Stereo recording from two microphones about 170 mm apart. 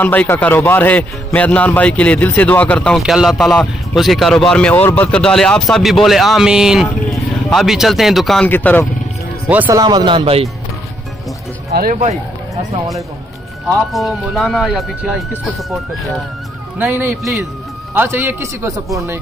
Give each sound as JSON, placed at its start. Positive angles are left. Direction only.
{"t": 0.0, "sound": "speech", "side_deg": 10}
{"t": 8.5, "sound": "speech", "side_deg": 10}
{"t": 9.5, "sound": "speech", "side_deg": -10}
{"t": 9.8, "sound": "speech", "side_deg": -25}
{"t": 11.7, "sound": "speech", "side_deg": -60}
{"t": 13.9, "sound": "speech", "side_deg": 0}
{"t": 16.7, "sound": "speech", "side_deg": -15}